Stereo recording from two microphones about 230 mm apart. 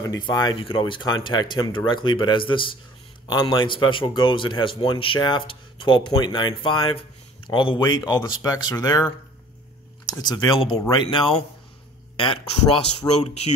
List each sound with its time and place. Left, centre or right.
0.0 s a man's voice: centre
10.1 s a man's voice: centre